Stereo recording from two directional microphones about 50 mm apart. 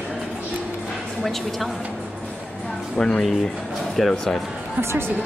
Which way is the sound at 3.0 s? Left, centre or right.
Centre.